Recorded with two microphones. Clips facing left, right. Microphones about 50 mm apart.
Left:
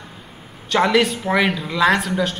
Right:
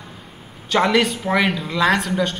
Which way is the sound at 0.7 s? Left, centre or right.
Centre.